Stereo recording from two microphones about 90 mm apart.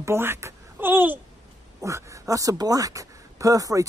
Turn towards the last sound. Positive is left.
turn(degrees=-40)  # may be behind; listen again after turning